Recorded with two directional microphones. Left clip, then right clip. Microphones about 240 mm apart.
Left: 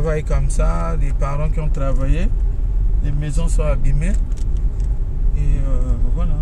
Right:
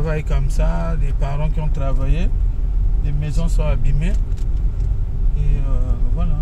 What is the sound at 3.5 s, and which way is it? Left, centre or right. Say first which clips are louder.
Speech: left 4 dB; centre.